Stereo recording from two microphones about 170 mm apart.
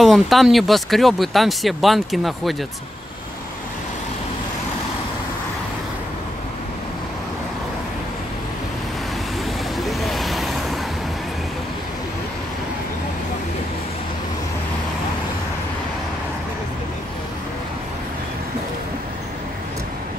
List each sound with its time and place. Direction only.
0.0 s speech: centre (ahead or behind)
9.8 s vehicle: centre (ahead or behind)